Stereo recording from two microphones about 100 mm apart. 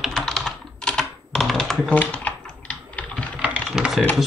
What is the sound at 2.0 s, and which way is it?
Typing, 15° left (ahead or behind).